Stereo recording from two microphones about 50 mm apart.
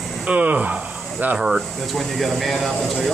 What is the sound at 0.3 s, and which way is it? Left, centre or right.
Speech, right.